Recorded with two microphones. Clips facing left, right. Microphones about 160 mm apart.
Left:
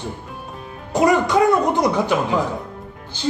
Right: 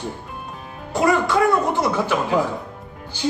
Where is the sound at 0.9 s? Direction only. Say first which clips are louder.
Left 2 dB; 20° left (ahead or behind).